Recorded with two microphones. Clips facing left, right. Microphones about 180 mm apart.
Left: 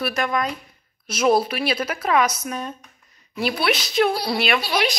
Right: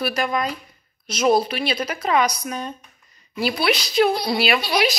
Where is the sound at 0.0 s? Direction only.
Centre (ahead or behind).